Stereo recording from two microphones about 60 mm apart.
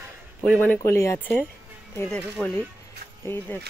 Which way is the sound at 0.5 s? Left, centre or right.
Left.